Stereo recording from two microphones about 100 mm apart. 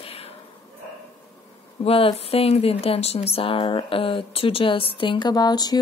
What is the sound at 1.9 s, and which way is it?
Speech, 75° left (ahead or behind).